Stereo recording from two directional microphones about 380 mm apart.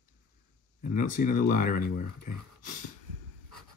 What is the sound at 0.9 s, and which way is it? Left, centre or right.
Speech, left.